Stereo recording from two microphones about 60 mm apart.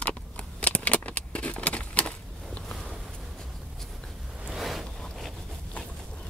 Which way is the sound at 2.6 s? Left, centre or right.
Centre.